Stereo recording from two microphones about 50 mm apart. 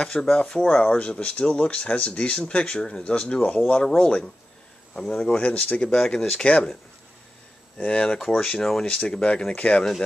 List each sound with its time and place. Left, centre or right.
0.0 s speech: centre
7.7 s speech: left